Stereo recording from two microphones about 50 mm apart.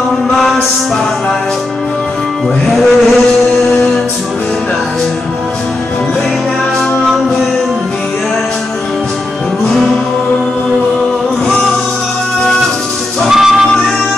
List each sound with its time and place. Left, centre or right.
2.6 s music: centre
13.3 s music: centre